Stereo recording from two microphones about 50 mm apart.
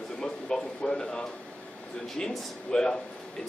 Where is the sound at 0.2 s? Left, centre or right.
Centre.